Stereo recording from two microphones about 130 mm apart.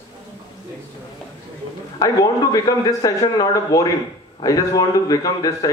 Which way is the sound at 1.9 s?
30° left (ahead or behind).